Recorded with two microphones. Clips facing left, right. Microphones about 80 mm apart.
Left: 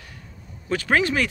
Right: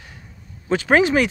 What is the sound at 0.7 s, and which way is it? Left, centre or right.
Speech, right.